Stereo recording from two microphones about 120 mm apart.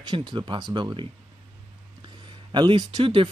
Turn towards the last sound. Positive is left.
turn(degrees=-45)  # may be behind; listen again after turning